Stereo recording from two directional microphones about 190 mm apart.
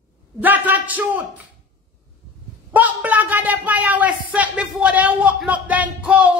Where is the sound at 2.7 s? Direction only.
10° right (ahead or behind).